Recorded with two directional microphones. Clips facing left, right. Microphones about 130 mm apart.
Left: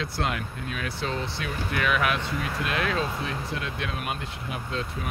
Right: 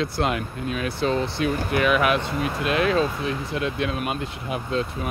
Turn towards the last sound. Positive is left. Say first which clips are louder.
# right 6 dB
turn(degrees=-20)  # may be behind; listen again after turning